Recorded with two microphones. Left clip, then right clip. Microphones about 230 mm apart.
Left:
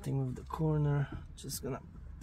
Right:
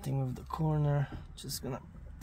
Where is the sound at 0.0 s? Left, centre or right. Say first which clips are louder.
Right 1 dB; right.